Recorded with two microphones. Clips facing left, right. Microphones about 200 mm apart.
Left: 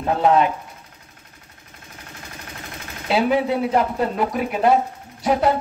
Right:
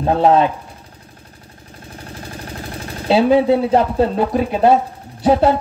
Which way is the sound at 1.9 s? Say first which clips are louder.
Right 8 dB; 35° right (ahead or behind).